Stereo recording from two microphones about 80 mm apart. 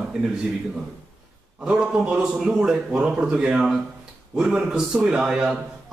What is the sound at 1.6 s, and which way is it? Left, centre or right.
A man's voice, centre.